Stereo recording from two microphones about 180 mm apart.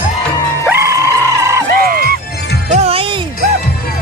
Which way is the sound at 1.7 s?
55° right (ahead or behind).